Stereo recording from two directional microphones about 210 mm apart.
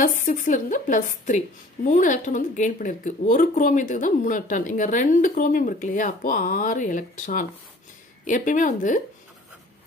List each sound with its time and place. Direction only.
0.0 s speech: 40° left (ahead or behind)